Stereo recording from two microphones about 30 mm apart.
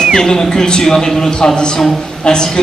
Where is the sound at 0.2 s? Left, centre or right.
Left.